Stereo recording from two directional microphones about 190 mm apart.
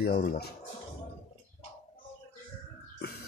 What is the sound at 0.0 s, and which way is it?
Speech, 50° left (ahead or behind).